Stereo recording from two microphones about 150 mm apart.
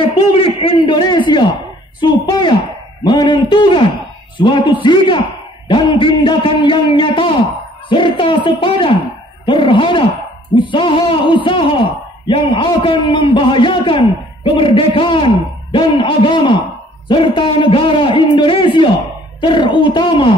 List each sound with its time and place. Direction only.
0.0 s a man's voice: 40° left (ahead or behind)